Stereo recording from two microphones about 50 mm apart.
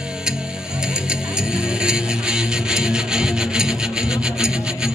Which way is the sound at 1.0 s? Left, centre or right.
Centre.